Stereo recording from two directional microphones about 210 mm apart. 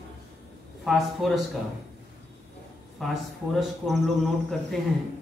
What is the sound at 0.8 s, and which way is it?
Speech, centre (ahead or behind).